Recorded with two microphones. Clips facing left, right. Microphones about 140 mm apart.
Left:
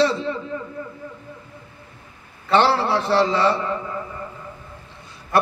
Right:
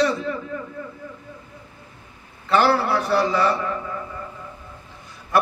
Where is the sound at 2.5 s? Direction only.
30° left (ahead or behind).